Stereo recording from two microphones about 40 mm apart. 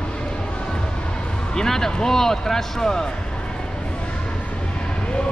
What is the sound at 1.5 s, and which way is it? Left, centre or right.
Speech, centre.